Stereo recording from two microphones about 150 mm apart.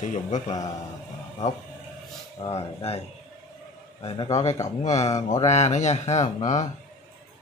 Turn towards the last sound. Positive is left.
turn(degrees=50)  # may be behind; listen again after turning